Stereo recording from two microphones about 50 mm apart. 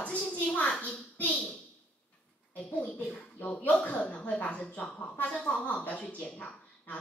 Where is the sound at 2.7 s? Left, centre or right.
Left.